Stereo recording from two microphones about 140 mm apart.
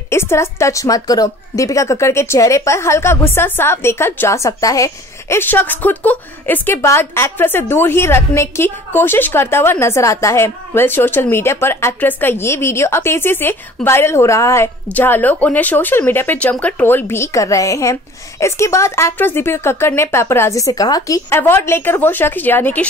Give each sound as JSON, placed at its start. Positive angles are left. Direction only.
{"t": 0.1, "sound": "a woman's voice", "side_deg": 20}